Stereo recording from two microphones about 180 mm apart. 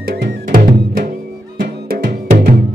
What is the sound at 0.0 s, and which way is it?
Music, 60° right (ahead or behind).